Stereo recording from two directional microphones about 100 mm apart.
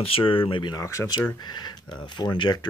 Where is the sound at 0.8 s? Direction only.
30° left (ahead or behind); by 2.6 s 45° left (ahead or behind).